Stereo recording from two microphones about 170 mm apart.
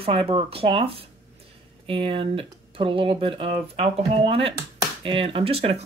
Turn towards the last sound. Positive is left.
turn(degrees=-35)  # may be behind; listen again after turning